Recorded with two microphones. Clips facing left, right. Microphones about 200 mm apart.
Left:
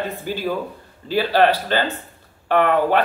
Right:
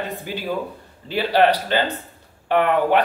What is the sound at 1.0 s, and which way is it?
A man's voice, 20° right (ahead or behind).